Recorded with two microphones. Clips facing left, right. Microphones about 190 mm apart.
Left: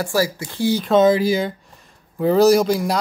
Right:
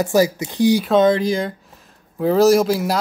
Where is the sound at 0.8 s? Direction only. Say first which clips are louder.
Even; centre (ahead or behind).